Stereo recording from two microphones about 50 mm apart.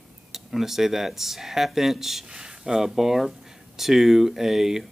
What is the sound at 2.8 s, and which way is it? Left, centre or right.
Speech, centre.